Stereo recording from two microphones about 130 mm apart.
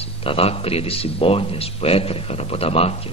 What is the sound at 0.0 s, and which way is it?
Speech, 45° left (ahead or behind).